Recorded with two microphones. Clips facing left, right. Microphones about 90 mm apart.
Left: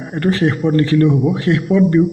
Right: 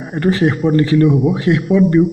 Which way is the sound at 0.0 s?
10° right (ahead or behind).